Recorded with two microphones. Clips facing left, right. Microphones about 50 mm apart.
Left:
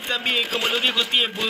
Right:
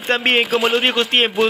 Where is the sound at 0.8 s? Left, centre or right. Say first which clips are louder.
Right 5 dB; right.